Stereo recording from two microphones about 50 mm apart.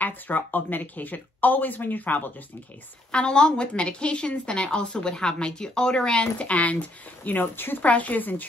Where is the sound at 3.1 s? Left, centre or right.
Left.